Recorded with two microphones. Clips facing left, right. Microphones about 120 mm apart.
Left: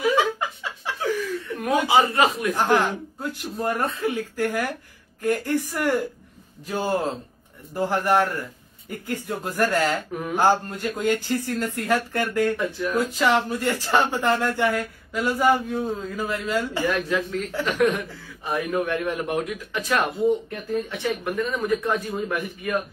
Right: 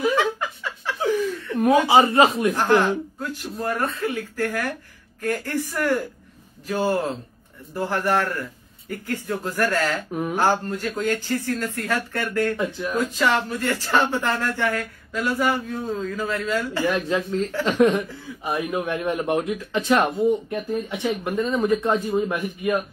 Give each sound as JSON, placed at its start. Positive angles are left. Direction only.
{"t": 0.1, "sound": "chuckle", "side_deg": 15}
{"t": 1.0, "sound": "chuckle", "side_deg": -25}
{"t": 1.9, "sound": "speech", "side_deg": -25}
{"t": 2.5, "sound": "speech", "side_deg": 15}
{"t": 6.7, "sound": "speech", "side_deg": 15}
{"t": 12.5, "sound": "speech", "side_deg": -15}
{"t": 12.9, "sound": "speech", "side_deg": 15}
{"t": 17.1, "sound": "speech", "side_deg": -25}